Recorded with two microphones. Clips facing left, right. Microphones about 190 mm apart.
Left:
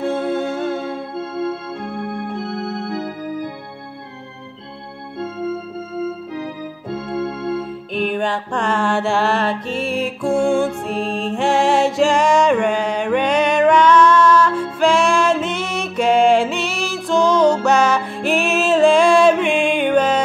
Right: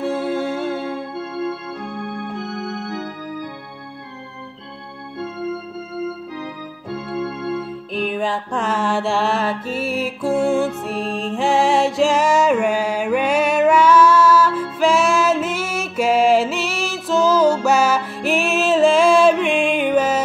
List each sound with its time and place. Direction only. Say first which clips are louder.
0.0 s music: left 1 dB; 5° right (ahead or behind)
2.6 s organ: left 3 dB; 30° left (ahead or behind)
7.9 s music: left 2 dB; centre (ahead or behind)